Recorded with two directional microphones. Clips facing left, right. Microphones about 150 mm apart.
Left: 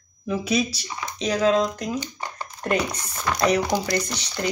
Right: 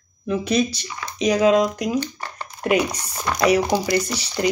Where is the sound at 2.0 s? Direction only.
15° left (ahead or behind).